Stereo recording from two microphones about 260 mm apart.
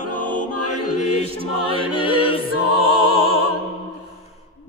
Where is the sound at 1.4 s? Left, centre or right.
Right.